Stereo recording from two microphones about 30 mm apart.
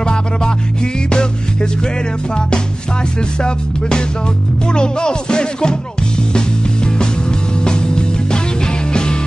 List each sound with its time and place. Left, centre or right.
0.0 s music: left
3.2 s music: left